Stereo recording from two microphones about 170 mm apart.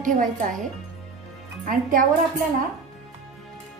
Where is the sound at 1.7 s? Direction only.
55° right (ahead or behind).